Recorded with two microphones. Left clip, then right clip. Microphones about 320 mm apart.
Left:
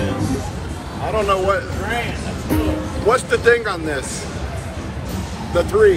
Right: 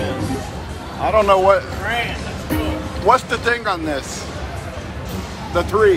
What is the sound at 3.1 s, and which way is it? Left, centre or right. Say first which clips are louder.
Speech: left 3 dB; centre.